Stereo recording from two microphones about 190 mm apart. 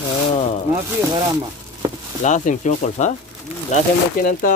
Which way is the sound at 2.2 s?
40° left (ahead or behind).